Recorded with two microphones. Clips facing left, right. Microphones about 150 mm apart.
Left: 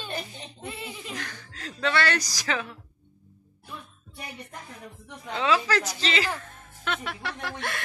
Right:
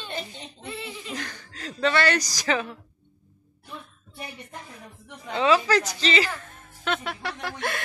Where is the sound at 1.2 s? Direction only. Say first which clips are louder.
Right 2 dB; centre (ahead or behind).